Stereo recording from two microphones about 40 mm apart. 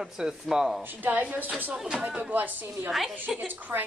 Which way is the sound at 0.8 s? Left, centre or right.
Right.